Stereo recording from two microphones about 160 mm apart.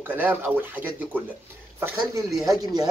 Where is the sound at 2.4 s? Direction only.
25° right (ahead or behind).